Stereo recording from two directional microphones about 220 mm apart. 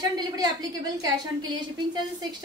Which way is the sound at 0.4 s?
15° right (ahead or behind).